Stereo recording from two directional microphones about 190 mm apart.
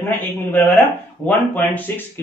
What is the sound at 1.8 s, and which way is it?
Speech, 10° left (ahead or behind).